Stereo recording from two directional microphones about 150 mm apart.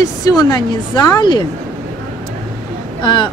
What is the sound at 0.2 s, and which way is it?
Speech, 25° left (ahead or behind).